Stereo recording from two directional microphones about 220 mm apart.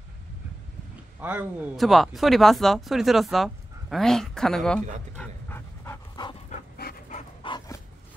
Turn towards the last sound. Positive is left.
turn(degrees=20)  # may be behind; listen again after turning